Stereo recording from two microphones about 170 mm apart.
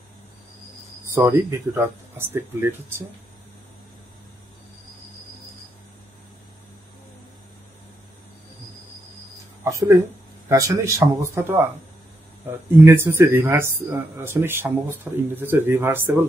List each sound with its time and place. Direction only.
1.1 s speech: 15° right (ahead or behind)
9.7 s speech: 20° right (ahead or behind)